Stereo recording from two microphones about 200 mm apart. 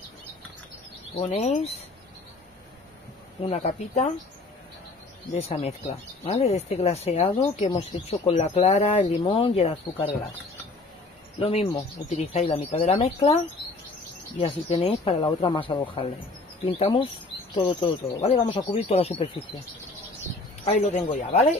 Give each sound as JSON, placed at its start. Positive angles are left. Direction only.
{"t": 1.1, "sound": "speech", "side_deg": 35}
{"t": 3.4, "sound": "speech", "side_deg": 35}
{"t": 5.3, "sound": "speech", "side_deg": 30}
{"t": 11.3, "sound": "speech", "side_deg": 30}
{"t": 14.4, "sound": "speech", "side_deg": 30}
{"t": 20.6, "sound": "speech", "side_deg": 35}